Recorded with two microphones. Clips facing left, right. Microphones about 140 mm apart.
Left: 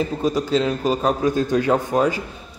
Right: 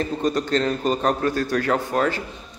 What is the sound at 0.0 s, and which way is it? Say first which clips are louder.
A man's voice: left 1 dB; 5° left (ahead or behind).